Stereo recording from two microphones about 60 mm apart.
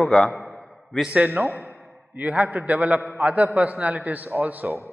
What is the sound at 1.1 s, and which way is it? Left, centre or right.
A man's voice, right.